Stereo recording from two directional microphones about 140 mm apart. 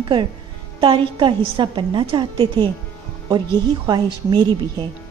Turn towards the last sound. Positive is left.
turn(degrees=-30)  # may be behind; listen again after turning